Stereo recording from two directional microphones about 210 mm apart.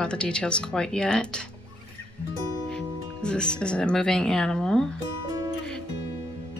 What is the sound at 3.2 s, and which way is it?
Speech, 5° left (ahead or behind).